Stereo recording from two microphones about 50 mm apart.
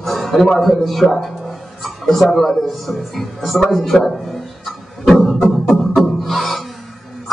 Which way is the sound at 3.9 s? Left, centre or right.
Centre.